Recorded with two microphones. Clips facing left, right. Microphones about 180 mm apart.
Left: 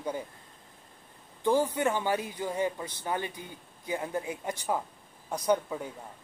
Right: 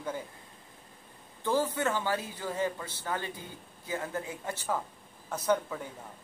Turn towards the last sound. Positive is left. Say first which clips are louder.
# left 2 dB
turn(degrees=15)  # may be behind; listen again after turning